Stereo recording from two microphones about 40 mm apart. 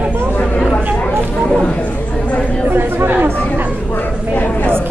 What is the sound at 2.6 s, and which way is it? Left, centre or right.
Chatter, right.